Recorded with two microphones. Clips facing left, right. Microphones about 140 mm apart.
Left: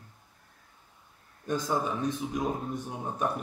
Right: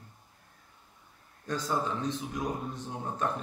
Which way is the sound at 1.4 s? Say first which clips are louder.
Left 2 dB; 15° left (ahead or behind).